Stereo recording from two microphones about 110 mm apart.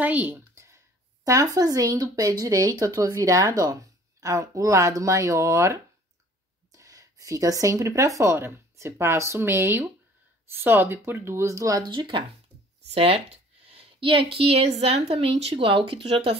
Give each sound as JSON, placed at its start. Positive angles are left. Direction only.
{"t": 0.0, "sound": "speech", "side_deg": -15}
{"t": 1.2, "sound": "speech", "side_deg": -30}
{"t": 11.8, "sound": "speech", "side_deg": -45}
{"t": 12.9, "sound": "a woman's voice", "side_deg": -60}